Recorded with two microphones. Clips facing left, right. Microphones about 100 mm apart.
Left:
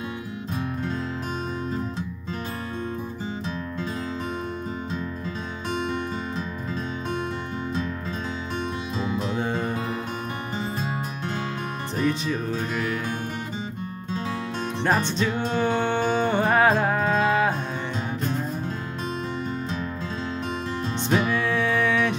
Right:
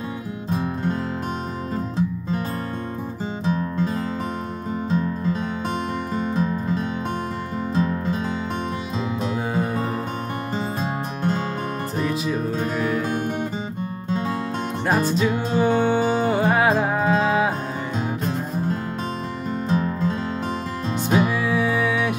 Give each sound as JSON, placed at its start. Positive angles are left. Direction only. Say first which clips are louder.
{"t": 3.4, "sound": "music", "louder": "right 7 dB", "side_deg": -40}
{"t": 6.3, "sound": "music", "louder": "right 7 dB", "side_deg": -40}
{"t": 10.8, "sound": "music", "louder": "right 4 dB", "side_deg": -40}
{"t": 12.0, "sound": "music", "louder": "even", "side_deg": -5}
{"t": 14.9, "sound": "music", "louder": "right 3 dB", "side_deg": -5}
{"t": 19.7, "sound": "music", "louder": "right 8 dB", "side_deg": -40}
{"t": 21.1, "sound": "music", "louder": "right 3 dB", "side_deg": -5}